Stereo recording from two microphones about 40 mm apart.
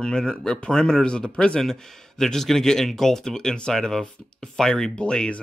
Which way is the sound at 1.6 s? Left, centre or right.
Centre.